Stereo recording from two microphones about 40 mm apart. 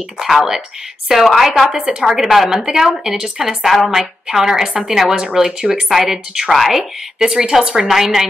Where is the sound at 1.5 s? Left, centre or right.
Centre.